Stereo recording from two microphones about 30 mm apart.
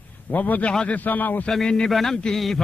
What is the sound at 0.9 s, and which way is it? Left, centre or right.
Speech, left.